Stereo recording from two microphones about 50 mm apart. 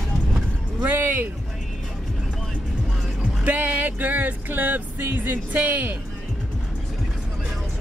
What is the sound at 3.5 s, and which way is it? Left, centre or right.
Speech, right.